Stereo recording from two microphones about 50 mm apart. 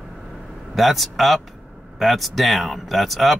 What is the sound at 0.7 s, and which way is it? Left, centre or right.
Speech, centre.